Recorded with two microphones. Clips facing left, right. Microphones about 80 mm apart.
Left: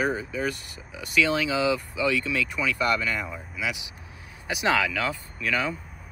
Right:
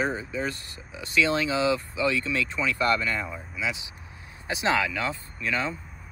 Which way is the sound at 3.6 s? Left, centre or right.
Right.